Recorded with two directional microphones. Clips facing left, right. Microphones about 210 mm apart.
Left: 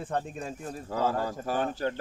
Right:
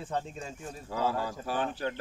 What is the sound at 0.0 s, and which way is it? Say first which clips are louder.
Speech: left 3 dB; 55° left (ahead or behind).